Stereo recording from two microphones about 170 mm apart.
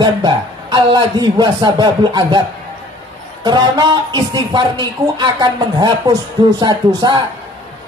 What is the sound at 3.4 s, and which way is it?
Speech, 25° right (ahead or behind).